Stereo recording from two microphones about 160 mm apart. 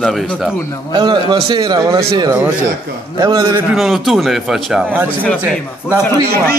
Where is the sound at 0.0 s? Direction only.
Centre (ahead or behind).